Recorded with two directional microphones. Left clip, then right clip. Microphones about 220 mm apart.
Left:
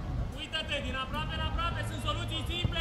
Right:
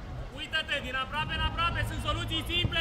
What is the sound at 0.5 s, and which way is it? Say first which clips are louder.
Speech: right 4 dB; 40° right (ahead or behind).